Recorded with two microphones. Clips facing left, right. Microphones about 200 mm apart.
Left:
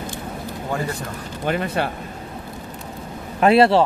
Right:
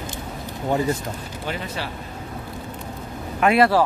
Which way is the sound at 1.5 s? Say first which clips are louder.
Left 8 dB; 55° left (ahead or behind).